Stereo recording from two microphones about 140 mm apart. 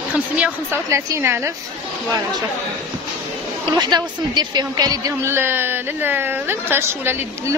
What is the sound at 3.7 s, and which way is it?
A man's voice, 30° right (ahead or behind).